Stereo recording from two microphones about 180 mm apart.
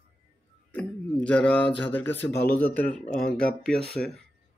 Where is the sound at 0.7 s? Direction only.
5° left (ahead or behind).